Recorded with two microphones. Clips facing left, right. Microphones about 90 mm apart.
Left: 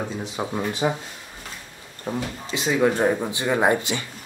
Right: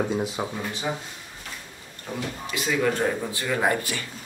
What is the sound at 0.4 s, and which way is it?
Speech, 5° left (ahead or behind).